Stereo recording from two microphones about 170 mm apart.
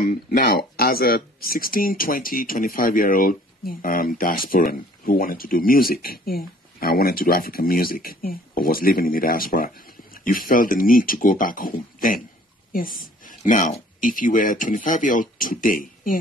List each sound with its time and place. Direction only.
0.0 s speech: 55° left (ahead or behind)